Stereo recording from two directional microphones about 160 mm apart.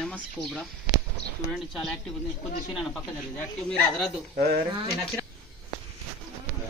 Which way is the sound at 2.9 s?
10° left (ahead or behind).